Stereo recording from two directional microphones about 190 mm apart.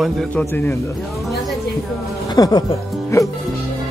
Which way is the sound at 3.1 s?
15° left (ahead or behind).